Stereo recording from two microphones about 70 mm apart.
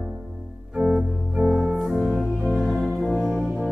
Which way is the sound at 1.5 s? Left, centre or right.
Centre.